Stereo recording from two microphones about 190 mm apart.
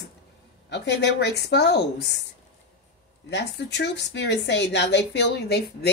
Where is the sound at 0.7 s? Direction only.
65° left (ahead or behind).